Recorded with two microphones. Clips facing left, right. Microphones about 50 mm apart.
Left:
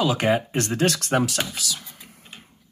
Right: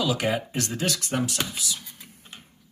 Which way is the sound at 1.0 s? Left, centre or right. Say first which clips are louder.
Left 5 dB; left.